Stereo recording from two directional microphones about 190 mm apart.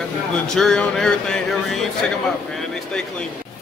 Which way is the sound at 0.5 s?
5° left (ahead or behind).